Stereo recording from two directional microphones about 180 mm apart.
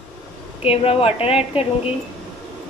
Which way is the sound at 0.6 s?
35° left (ahead or behind).